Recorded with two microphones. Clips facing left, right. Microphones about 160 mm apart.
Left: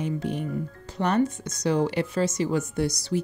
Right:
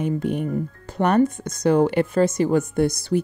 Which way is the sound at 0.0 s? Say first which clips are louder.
Right 5 dB; 55° right (ahead or behind).